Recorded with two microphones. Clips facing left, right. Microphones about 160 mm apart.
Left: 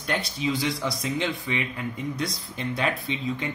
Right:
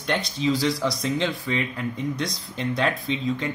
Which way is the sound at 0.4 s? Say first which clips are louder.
Right 5 dB; 15° left (ahead or behind).